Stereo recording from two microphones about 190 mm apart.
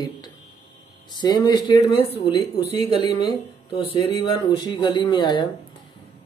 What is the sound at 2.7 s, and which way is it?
Speech, 30° right (ahead or behind).